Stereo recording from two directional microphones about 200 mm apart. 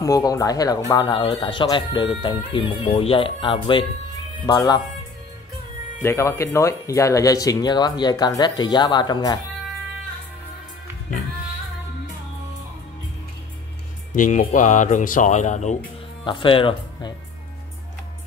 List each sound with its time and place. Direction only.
0.0 s speech: 15° left (ahead or behind)
6.0 s speech: 15° left (ahead or behind)
14.1 s speech: 40° left (ahead or behind)
16.3 s speech: 25° left (ahead or behind)